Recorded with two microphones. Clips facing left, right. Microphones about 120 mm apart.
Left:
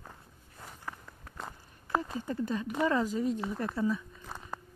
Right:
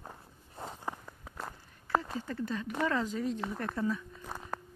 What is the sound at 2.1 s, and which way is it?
Speech, 15° left (ahead or behind).